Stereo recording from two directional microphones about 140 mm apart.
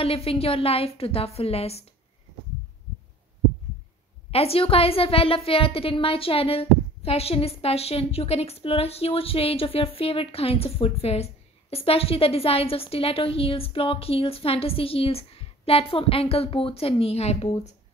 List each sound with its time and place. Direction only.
0.0 s a woman's voice: 45° left (ahead or behind)
4.3 s a woman's voice: 45° left (ahead or behind)